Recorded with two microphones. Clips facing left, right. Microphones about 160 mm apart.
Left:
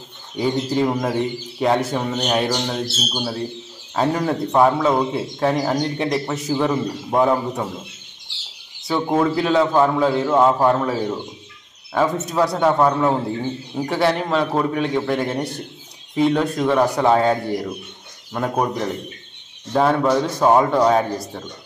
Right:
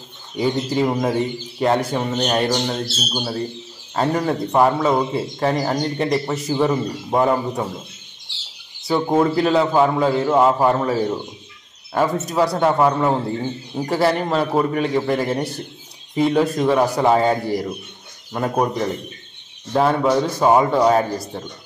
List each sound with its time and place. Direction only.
0.4 s speech: centre (ahead or behind)
8.8 s speech: 5° right (ahead or behind)